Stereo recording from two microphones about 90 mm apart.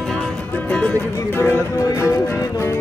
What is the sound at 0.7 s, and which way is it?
Speech, 15° left (ahead or behind).